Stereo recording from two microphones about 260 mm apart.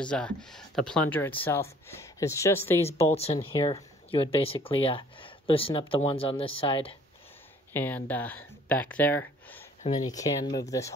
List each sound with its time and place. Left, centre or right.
0.0 s speech: centre
2.9 s speech: left
7.7 s speech: centre